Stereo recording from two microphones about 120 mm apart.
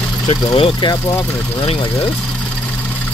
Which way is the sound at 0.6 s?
35° left (ahead or behind).